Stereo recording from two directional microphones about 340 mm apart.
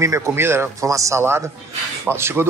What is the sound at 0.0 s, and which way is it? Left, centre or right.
Speech, centre.